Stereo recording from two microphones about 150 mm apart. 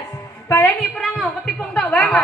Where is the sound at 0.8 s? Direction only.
Centre (ahead or behind).